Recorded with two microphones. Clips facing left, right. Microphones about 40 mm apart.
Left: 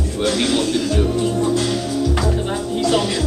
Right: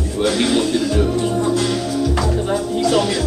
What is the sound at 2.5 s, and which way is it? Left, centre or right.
Music, centre.